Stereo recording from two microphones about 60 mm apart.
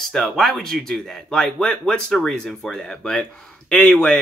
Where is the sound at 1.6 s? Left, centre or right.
Centre.